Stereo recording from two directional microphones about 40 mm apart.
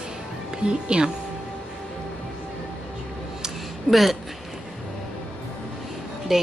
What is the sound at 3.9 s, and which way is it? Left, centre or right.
Speech, centre.